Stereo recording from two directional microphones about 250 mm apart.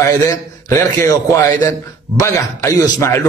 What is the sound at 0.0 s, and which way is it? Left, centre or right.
A man's voice, centre.